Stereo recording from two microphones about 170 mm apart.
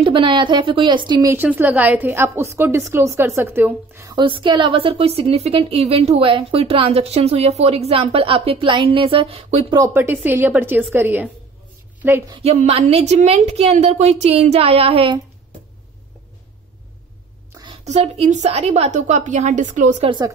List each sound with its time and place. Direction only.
0.0 s speech: 30° right (ahead or behind)
1.3 s a woman's voice: 10° right (ahead or behind)
4.1 s a woman's voice: 30° right (ahead or behind)
10.1 s a woman's voice: 10° right (ahead or behind)
12.4 s a woman's voice: 35° right (ahead or behind)
17.8 s a woman's voice: 40° right (ahead or behind)
20.1 s speech: 25° right (ahead or behind)